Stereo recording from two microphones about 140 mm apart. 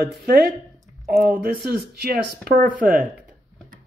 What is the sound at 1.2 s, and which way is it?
Speech, 90° right.